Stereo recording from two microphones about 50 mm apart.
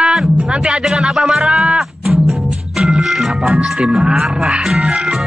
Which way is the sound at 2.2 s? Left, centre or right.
Centre.